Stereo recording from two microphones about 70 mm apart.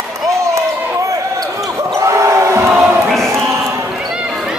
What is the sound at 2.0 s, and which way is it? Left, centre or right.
Basketball bounce, right.